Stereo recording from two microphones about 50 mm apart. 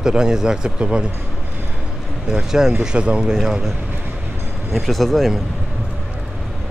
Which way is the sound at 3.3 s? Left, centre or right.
Centre.